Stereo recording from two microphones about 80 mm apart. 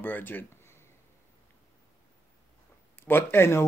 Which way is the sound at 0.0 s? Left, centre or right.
Left.